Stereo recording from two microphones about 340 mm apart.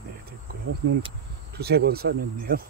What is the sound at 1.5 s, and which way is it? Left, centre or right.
Speech, right.